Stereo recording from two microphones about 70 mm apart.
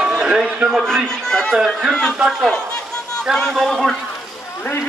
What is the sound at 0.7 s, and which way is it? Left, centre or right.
A man's voice, centre.